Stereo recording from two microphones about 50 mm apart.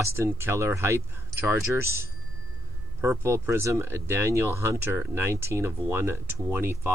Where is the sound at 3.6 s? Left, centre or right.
Right.